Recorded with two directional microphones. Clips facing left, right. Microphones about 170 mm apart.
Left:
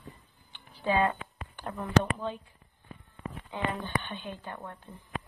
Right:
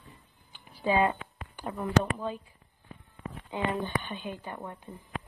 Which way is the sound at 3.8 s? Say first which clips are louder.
Right 1 dB; 10° right (ahead or behind).